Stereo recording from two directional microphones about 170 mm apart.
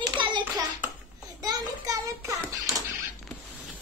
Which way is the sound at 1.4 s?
20° right (ahead or behind).